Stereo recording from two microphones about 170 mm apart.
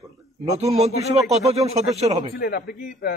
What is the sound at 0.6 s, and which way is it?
Speech, 40° right (ahead or behind).